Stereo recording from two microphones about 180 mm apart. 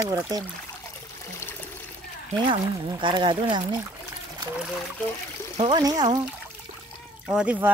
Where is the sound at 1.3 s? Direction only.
15° left (ahead or behind).